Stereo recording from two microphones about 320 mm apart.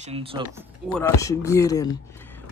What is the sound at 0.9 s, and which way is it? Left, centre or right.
Speech, centre.